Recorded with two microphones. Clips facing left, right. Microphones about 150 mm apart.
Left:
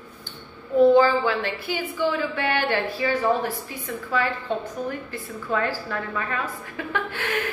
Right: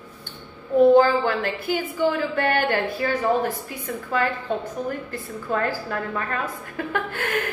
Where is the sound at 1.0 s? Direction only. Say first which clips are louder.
Right 1 dB; 50° right (ahead or behind).